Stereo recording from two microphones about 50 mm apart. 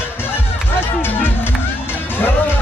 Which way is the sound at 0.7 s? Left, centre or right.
Left.